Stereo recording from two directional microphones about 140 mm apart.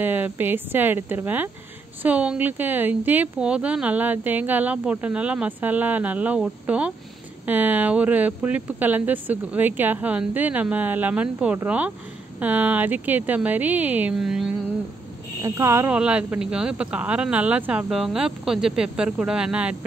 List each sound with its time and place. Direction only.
0.0 s a woman's voice: 15° right (ahead or behind)
15.4 s speech: 20° right (ahead or behind)
16.0 s a woman's voice: 10° right (ahead or behind)